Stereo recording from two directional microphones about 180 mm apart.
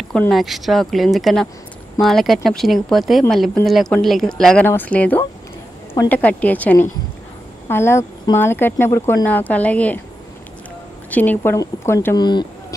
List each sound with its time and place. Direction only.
0.1 s speech: centre (ahead or behind)
11.1 s speech: 10° left (ahead or behind)
12.2 s speech: 25° left (ahead or behind)